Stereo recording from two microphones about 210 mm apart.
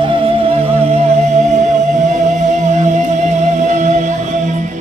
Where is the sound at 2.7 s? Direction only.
35° right (ahead or behind).